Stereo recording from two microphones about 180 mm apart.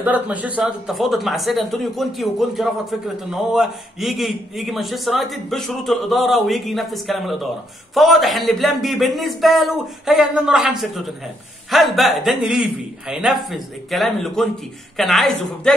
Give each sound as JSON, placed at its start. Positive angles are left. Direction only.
{"t": 0.0, "sound": "speech", "side_deg": -10}